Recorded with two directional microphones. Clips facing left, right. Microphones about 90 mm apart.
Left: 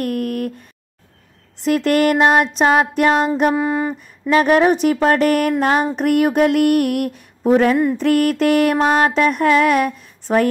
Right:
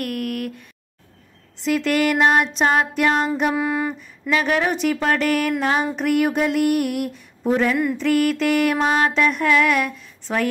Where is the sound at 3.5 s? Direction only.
30° left (ahead or behind).